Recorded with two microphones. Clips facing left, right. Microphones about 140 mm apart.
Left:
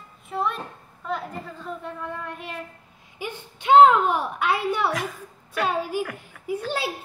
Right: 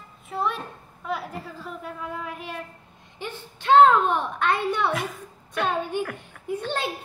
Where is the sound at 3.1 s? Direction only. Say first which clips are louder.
Left 2 dB; 10° left (ahead or behind).